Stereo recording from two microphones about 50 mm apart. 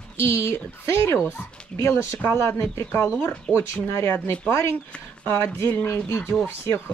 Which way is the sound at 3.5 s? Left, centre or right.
Left.